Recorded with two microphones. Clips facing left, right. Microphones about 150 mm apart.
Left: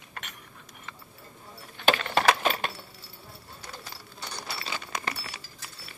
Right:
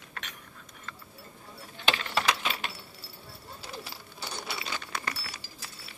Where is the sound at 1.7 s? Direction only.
55° left (ahead or behind).